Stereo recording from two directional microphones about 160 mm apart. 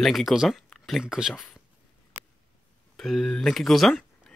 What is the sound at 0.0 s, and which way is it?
Speech, centre (ahead or behind).